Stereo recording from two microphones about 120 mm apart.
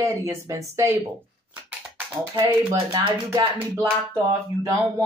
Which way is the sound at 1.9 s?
15° right (ahead or behind).